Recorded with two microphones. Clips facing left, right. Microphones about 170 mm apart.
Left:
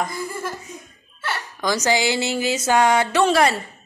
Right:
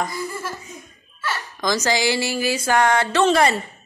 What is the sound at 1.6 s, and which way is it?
Speech, 10° left (ahead or behind).